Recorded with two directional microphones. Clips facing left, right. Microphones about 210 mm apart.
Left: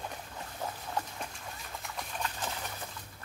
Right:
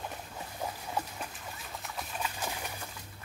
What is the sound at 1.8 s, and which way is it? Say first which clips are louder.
Dog: even; 5° right (ahead or behind).